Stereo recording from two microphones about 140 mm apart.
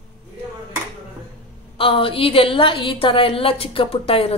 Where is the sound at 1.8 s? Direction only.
40° left (ahead or behind).